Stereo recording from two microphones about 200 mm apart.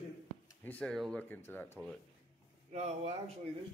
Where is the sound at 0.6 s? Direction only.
5° left (ahead or behind).